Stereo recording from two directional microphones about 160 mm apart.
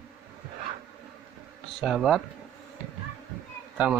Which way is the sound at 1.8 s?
Centre (ahead or behind).